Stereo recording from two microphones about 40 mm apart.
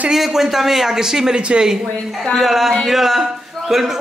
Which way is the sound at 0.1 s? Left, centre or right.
Centre.